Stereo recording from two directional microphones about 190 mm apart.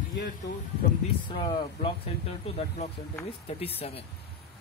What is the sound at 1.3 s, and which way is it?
Speech, 25° left (ahead or behind).